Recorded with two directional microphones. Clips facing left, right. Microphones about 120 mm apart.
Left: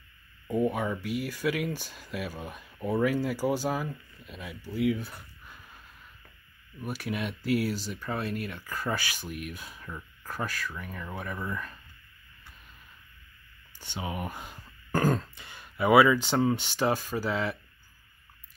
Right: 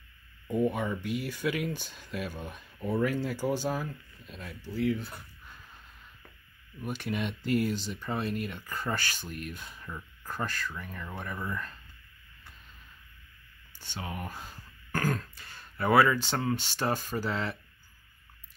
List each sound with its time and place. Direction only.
0.5 s speech: centre (ahead or behind)
6.8 s speech: 5° left (ahead or behind)
10.4 s speech: 10° left (ahead or behind)
13.7 s speech: 15° left (ahead or behind)
14.9 s speech: 25° left (ahead or behind); by 17.6 s centre (ahead or behind)